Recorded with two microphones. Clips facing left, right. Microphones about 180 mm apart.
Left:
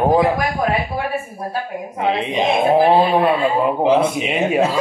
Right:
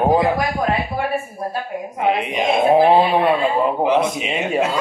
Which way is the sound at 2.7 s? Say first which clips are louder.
Even; centre (ahead or behind).